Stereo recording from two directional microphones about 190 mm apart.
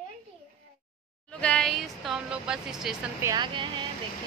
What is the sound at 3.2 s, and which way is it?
Speech, 20° right (ahead or behind).